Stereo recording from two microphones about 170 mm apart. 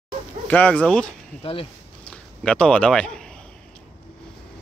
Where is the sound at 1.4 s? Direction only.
35° left (ahead or behind).